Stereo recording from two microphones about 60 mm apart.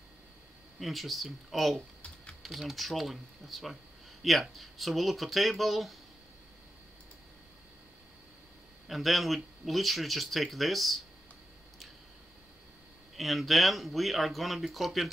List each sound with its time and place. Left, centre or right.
0.7 s speech: centre
2.0 s typing: centre
2.4 s speech: centre
8.8 s speech: centre
13.1 s speech: centre